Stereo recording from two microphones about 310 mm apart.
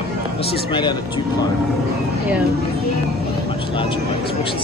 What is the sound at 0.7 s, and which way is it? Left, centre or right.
Speech, centre.